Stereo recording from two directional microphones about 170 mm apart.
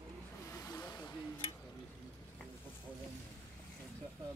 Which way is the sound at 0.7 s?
20° left (ahead or behind).